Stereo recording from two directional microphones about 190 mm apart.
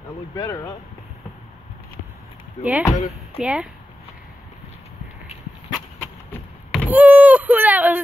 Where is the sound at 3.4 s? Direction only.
5° right (ahead or behind).